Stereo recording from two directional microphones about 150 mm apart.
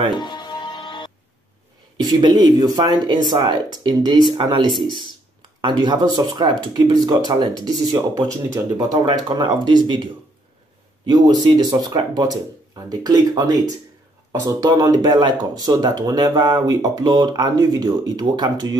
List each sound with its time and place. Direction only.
0.1 s music: 30° left (ahead or behind)
2.0 s speech: 25° right (ahead or behind)
11.1 s speech: 25° right (ahead or behind)